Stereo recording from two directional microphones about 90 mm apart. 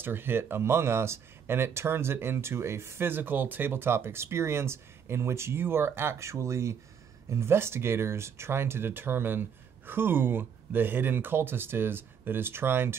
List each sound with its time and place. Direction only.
0.0 s speech: 25° right (ahead or behind)